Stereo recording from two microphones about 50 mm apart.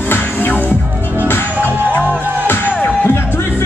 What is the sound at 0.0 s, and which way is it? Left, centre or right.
Music, left.